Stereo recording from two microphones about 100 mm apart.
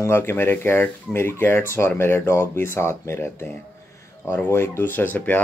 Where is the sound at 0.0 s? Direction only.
25° left (ahead or behind).